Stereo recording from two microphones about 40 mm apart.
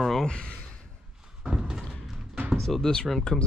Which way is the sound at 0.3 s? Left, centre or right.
Left.